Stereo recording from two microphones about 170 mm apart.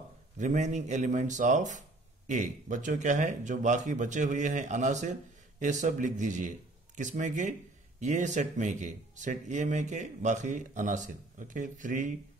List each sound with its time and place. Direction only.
0.4 s speech: 45° right (ahead or behind)